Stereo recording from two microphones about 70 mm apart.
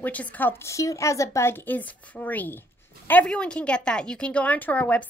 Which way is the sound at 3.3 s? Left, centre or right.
Centre.